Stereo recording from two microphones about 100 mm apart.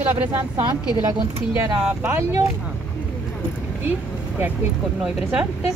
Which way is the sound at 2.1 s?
30° right (ahead or behind).